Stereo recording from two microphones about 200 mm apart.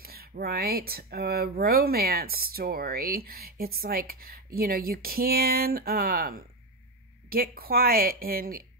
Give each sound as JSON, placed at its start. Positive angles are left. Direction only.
{"t": 0.0, "sound": "speech", "side_deg": -50}